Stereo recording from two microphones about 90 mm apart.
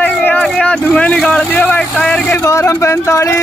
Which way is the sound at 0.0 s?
20° left (ahead or behind).